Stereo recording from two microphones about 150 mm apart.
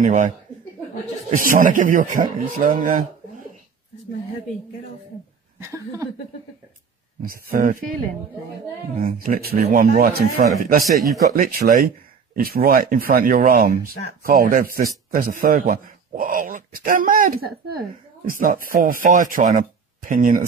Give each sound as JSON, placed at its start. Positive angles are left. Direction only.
{"t": 0.0, "sound": "a man's voice", "side_deg": -60}
{"t": 1.3, "sound": "a man's voice", "side_deg": -65}
{"t": 5.6, "sound": "speech", "side_deg": -20}
{"t": 7.2, "sound": "a man's voice", "side_deg": -70}
{"t": 8.9, "sound": "a man's voice", "side_deg": -75}